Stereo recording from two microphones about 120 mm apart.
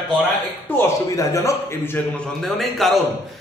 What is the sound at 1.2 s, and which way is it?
Speech, 25° left (ahead or behind).